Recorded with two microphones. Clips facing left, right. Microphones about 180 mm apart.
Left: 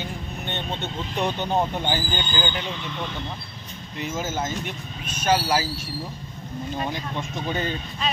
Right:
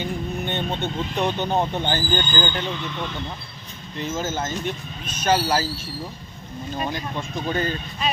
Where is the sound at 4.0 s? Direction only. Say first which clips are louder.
Right 1 dB; 10° left (ahead or behind).